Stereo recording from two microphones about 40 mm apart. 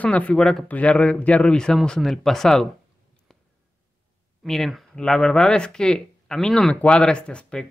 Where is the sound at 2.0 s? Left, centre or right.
Centre.